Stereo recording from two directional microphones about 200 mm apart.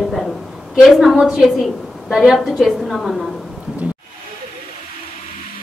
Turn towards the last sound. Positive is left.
turn(degrees=-5)  # may be behind; listen again after turning